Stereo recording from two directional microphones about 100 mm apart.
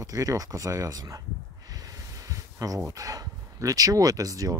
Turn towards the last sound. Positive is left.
turn(degrees=-35)  # may be behind; listen again after turning